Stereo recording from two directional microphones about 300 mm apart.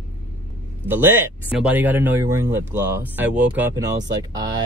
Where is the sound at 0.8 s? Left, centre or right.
Centre.